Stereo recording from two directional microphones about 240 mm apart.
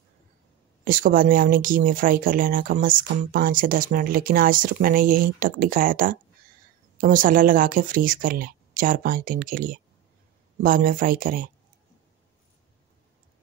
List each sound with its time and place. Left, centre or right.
0.8 s speech: right